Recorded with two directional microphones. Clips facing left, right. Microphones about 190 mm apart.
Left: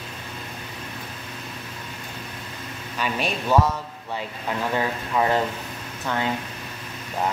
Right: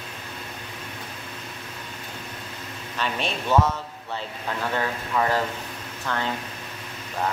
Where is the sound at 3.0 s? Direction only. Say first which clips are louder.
Left 2 dB; 10° left (ahead or behind).